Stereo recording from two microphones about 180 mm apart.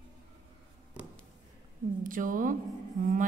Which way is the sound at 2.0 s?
50° right (ahead or behind).